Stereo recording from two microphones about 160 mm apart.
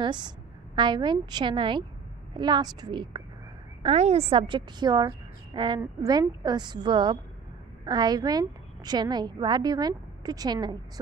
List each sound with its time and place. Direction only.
0.0 s a woman's voice: 30° right (ahead or behind)
3.8 s a woman's voice: 40° right (ahead or behind); by 10.8 s 25° right (ahead or behind)